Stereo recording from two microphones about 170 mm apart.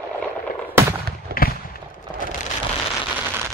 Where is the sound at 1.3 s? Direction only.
65° right (ahead or behind).